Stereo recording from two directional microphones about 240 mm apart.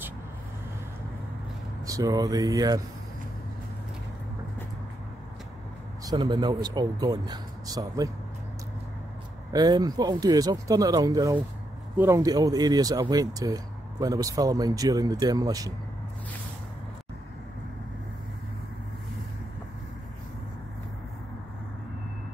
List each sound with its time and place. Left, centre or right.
1.9 s speech: centre
6.0 s speech: centre
9.5 s speech: centre